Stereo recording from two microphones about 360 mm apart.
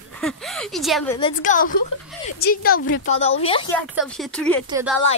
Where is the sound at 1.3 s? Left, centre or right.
Left.